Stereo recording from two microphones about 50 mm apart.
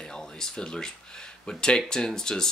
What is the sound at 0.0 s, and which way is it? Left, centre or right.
Speech, centre.